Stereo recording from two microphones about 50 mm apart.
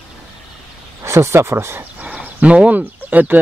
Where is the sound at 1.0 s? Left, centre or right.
Right.